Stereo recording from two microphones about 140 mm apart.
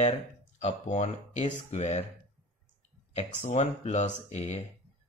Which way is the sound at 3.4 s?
55° left (ahead or behind).